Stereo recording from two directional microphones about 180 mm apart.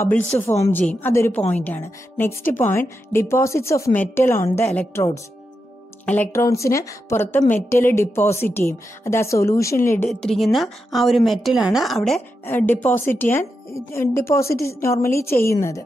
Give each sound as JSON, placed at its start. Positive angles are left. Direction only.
{"t": 0.4, "sound": "a woman's voice", "side_deg": 15}
{"t": 10.0, "sound": "a woman's voice", "side_deg": 0}